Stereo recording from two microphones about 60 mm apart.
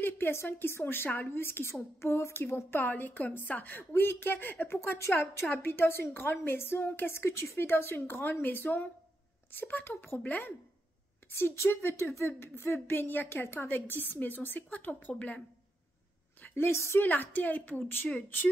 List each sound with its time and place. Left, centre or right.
0.0 s speech: left
2.4 s speech: left
4.6 s a woman's voice: left
11.3 s speech: left
16.5 s a woman's voice: left
17.0 s speech: left